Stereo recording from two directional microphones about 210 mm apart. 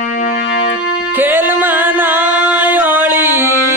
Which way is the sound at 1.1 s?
10° right (ahead or behind).